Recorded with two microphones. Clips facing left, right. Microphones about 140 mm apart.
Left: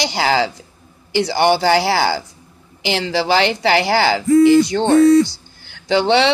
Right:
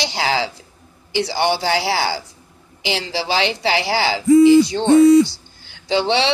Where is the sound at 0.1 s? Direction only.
65° left (ahead or behind).